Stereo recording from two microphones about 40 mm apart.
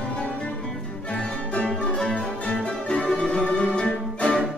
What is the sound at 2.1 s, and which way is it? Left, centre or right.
Music, left.